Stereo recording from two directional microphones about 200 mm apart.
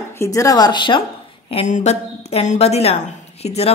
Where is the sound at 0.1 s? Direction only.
15° left (ahead or behind).